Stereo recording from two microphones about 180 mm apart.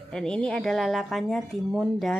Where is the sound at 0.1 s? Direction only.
5° left (ahead or behind).